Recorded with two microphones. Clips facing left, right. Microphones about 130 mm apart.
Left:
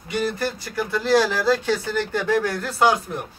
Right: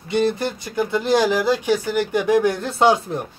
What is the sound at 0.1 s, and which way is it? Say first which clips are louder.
Speech: right 4 dB; 20° right (ahead or behind).